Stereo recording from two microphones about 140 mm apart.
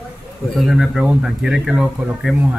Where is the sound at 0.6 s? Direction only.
Centre (ahead or behind).